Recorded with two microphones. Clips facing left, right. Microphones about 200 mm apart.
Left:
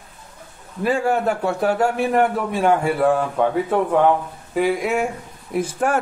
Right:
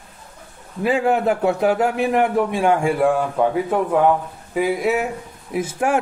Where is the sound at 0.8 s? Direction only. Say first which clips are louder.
Right 2 dB; 20° right (ahead or behind).